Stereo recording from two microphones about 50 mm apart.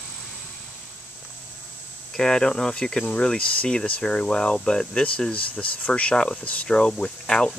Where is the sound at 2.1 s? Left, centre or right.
Centre.